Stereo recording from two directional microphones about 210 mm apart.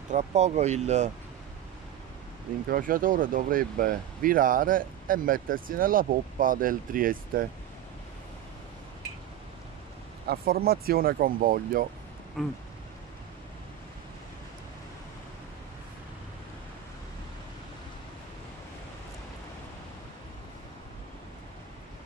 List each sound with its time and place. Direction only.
0.1 s speech: 35° right (ahead or behind)
2.7 s speech: 40° right (ahead or behind)
10.2 s speech: 45° right (ahead or behind)
12.4 s speech: centre (ahead or behind)